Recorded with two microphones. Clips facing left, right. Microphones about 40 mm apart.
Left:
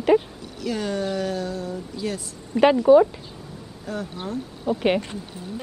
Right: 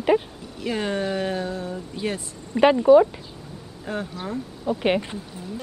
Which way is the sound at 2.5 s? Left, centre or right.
Centre.